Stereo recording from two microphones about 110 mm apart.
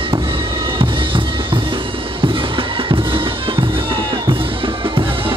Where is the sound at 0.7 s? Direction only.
50° right (ahead or behind).